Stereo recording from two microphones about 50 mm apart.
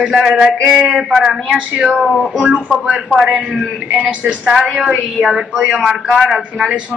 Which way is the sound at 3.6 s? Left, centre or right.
Centre.